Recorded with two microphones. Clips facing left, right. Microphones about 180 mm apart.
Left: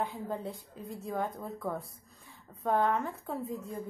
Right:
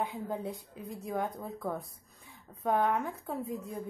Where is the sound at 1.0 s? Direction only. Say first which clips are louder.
Even; centre (ahead or behind).